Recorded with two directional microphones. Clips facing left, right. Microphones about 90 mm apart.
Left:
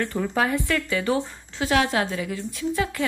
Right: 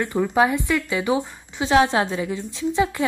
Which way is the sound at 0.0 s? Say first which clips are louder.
Right 5 dB; 15° right (ahead or behind).